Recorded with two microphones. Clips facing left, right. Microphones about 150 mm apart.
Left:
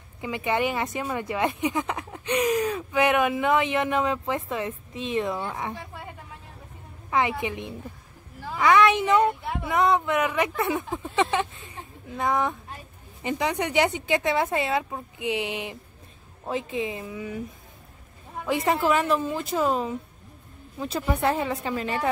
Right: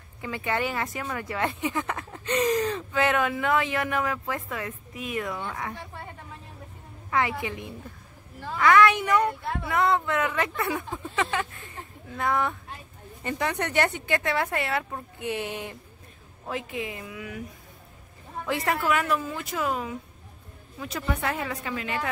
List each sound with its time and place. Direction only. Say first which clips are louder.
0.2 s speech: left 3 dB; 20° left (ahead or behind)
7.1 s speech: left 2 dB; 20° left (ahead or behind)
18.4 s speech: left 3 dB; 20° left (ahead or behind)
21.1 s speech: left 5 dB; 30° left (ahead or behind)